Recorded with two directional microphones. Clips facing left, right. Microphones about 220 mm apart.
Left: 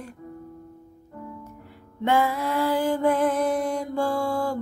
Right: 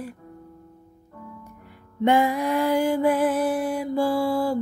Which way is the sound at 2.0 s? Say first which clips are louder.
Right 3 dB; 15° right (ahead or behind).